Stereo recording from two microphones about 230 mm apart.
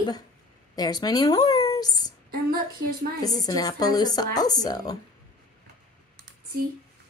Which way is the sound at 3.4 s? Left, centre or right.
Centre.